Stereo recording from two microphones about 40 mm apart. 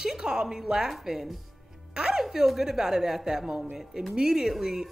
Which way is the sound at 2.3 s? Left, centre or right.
Centre.